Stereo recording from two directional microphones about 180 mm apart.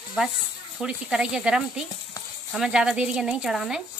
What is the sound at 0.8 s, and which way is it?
Speech, 5° right (ahead or behind).